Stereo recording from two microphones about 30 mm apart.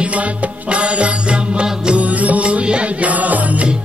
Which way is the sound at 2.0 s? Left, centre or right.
Right.